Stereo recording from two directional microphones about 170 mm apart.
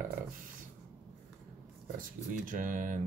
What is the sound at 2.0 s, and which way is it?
Speech, 50° right (ahead or behind).